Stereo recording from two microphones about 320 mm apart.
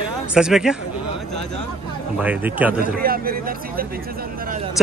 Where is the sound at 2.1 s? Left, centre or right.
Centre.